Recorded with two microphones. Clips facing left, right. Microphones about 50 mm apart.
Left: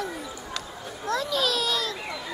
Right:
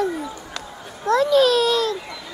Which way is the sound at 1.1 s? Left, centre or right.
Right.